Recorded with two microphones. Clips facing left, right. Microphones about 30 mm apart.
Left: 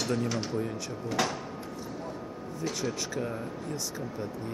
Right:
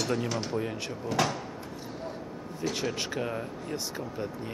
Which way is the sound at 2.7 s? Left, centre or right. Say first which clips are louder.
Right 2 dB; right.